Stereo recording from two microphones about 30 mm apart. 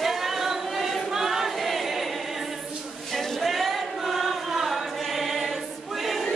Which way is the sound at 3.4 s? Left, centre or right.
Centre.